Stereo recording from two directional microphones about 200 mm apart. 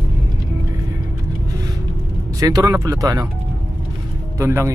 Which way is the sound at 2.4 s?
15° right (ahead or behind).